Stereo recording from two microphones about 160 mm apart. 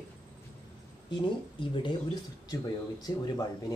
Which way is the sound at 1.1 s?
30° left (ahead or behind).